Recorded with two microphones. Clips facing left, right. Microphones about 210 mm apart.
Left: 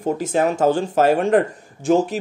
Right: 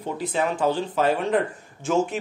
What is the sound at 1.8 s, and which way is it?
Speech, 35° left (ahead or behind).